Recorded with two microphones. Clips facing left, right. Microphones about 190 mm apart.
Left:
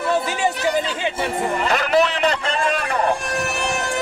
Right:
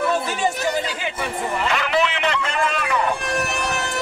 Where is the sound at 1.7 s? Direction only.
40° left (ahead or behind).